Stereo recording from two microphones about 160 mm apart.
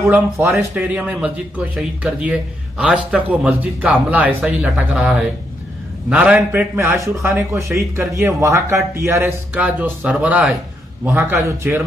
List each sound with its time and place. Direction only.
0.0 s a man's voice: 15° right (ahead or behind)